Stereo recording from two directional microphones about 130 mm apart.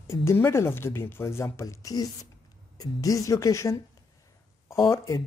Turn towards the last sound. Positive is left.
turn(degrees=20)  # may be behind; listen again after turning